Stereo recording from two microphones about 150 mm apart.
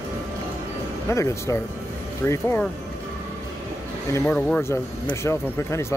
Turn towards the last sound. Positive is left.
turn(degrees=20)  # may be behind; listen again after turning